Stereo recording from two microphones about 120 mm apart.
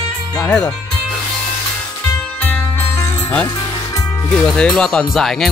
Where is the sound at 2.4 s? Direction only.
15° left (ahead or behind).